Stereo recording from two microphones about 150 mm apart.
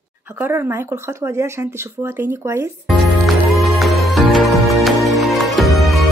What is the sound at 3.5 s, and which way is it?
Music, centre (ahead or behind).